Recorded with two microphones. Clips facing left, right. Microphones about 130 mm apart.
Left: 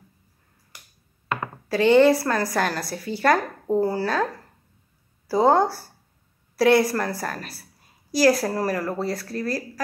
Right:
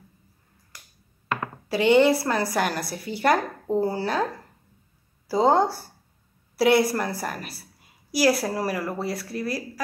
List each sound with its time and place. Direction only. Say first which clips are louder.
1.7 s a woman's voice: left 2 dB; 15° right (ahead or behind)
5.3 s a woman's voice: left 1 dB; 20° right (ahead or behind)